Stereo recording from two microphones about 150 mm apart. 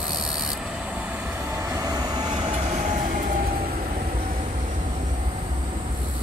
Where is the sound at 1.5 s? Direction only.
20° right (ahead or behind).